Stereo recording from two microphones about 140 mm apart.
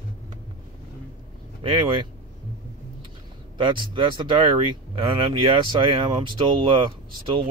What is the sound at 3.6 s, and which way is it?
Speech, 35° right (ahead or behind).